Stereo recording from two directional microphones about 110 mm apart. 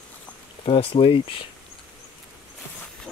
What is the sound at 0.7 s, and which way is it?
Speech, 55° left (ahead or behind).